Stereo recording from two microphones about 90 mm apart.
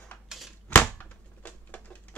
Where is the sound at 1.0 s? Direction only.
20° left (ahead or behind).